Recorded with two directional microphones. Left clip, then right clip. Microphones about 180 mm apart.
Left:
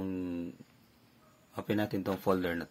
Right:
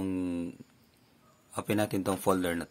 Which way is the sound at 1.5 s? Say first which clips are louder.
Right 3 dB; 35° right (ahead or behind).